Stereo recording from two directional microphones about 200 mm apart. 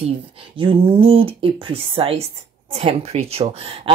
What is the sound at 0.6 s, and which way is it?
Speech, 30° right (ahead or behind).